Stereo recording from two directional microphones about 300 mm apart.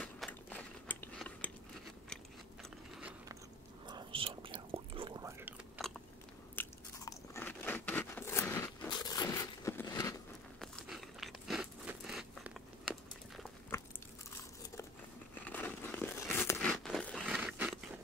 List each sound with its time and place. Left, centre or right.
0.0 s biting: centre
3.0 s biting: centre
3.8 s whispering: centre
6.5 s biting: centre
10.6 s a sound: centre
15.4 s a sound: centre